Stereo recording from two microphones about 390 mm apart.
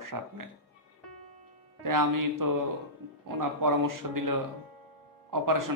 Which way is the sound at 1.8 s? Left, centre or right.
Right.